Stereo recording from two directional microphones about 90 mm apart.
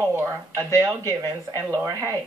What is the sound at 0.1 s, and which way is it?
Speech, 25° right (ahead or behind).